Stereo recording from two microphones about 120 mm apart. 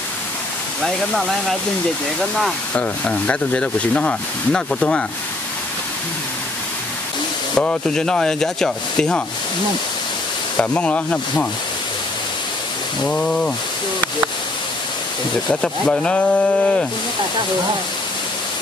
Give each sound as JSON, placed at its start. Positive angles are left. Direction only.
{"t": 0.8, "sound": "speech", "side_deg": 0}
{"t": 2.7, "sound": "speech", "side_deg": 10}
{"t": 7.5, "sound": "speech", "side_deg": 5}
{"t": 10.6, "sound": "speech", "side_deg": 10}
{"t": 13.0, "sound": "speech", "side_deg": 5}
{"t": 15.6, "sound": "speech", "side_deg": 5}